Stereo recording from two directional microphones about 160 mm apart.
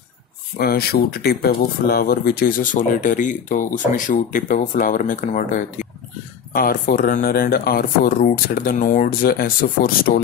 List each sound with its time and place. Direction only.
0.6 s speech: 70° left (ahead or behind)